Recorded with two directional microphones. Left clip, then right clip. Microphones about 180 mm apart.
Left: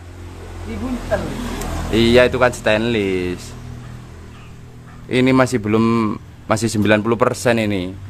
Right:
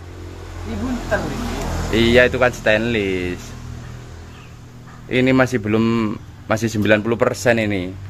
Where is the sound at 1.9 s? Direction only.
25° left (ahead or behind).